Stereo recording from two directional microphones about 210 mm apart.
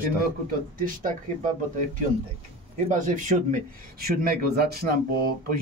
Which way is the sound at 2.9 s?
35° right (ahead or behind).